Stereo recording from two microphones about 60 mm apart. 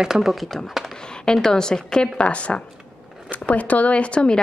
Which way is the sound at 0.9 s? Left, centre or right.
Centre.